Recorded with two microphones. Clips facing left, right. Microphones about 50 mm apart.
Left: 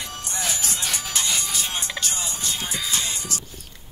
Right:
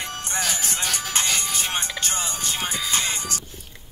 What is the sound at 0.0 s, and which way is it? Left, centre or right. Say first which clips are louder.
Music: right 3 dB; right.